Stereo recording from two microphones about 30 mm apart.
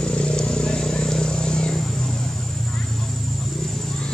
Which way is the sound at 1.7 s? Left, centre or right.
Centre.